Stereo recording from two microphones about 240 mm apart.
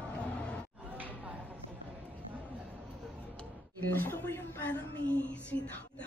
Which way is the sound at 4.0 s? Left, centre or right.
Centre.